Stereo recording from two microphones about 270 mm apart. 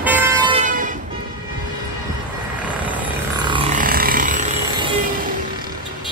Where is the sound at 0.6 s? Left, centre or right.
Right.